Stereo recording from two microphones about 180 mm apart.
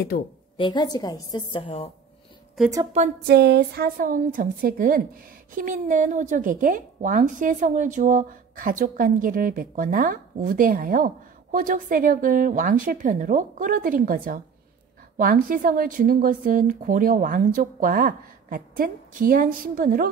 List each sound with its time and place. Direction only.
0.1 s a woman's voice: 55° left (ahead or behind)
0.6 s a woman's voice: 25° left (ahead or behind)
3.3 s a woman's voice: 65° right (ahead or behind); by 20.1 s 50° right (ahead or behind)